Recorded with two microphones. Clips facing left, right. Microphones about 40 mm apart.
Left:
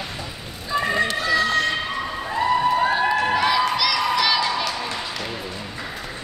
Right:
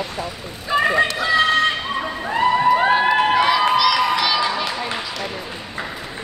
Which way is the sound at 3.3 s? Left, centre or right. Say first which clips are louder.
Right 3 dB; centre.